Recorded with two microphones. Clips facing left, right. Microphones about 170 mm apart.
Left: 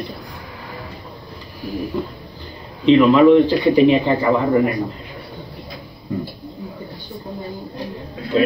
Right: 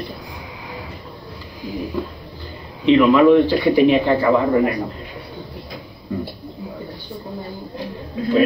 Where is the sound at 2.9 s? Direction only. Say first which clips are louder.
Left 1 dB; 15° left (ahead or behind).